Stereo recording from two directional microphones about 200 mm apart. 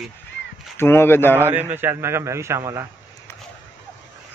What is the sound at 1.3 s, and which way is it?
Speech, 10° right (ahead or behind).